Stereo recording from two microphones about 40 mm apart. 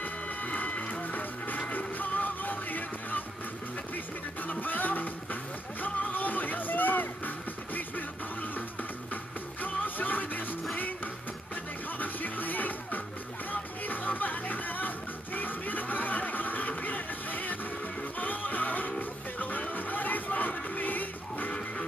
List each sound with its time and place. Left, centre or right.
0.0 s music: left
1.0 s music: left
12.0 s music: left
21.5 s music: left